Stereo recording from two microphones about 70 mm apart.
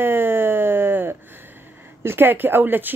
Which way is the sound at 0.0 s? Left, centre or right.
Right.